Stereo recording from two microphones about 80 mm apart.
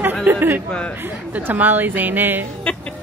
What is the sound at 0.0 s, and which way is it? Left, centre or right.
Chatter, right.